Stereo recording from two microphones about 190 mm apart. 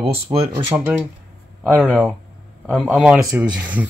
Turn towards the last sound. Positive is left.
turn(degrees=-10)  # may be behind; listen again after turning